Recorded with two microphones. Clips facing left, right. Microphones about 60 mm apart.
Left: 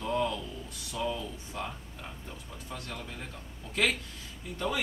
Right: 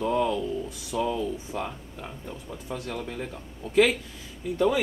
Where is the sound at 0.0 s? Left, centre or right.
Centre.